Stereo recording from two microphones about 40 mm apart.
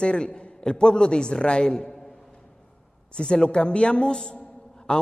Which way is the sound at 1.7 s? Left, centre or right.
Centre.